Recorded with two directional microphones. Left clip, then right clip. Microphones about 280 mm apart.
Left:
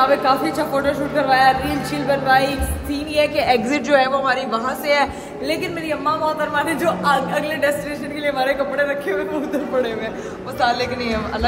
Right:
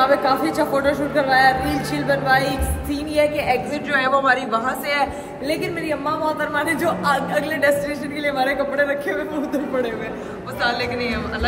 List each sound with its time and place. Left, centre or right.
0.0 s a woman's voice: centre
3.3 s a woman's voice: left
3.9 s a woman's voice: centre
10.6 s a woman's voice: centre